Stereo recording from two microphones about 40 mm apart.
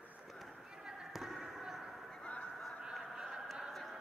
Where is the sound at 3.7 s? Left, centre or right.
Centre.